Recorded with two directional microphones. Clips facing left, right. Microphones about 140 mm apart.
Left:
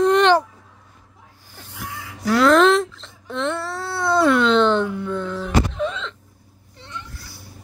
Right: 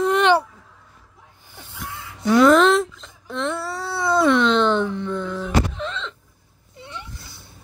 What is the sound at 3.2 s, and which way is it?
Wail, centre (ahead or behind).